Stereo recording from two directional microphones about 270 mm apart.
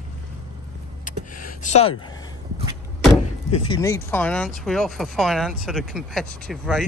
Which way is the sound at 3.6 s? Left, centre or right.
Centre.